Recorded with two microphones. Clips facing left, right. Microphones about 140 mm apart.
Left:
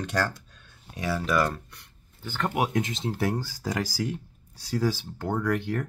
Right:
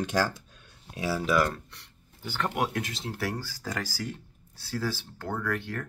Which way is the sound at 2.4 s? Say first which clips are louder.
Left 3 dB; 10° left (ahead or behind).